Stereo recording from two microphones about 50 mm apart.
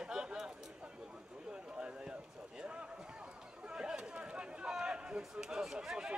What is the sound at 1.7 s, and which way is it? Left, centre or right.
Speech, centre.